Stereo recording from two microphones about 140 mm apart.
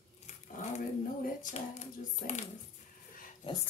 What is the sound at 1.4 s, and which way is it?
Hands, 60° left (ahead or behind).